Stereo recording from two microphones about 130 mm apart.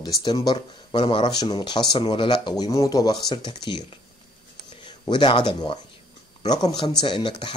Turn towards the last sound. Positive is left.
turn(degrees=40)  # may be behind; listen again after turning